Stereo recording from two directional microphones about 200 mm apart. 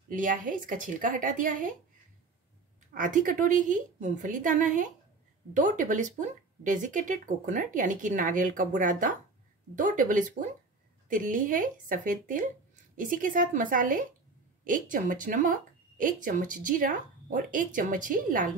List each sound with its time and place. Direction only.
0.1 s speech: 40° right (ahead or behind)
2.9 s a woman's voice: 40° right (ahead or behind)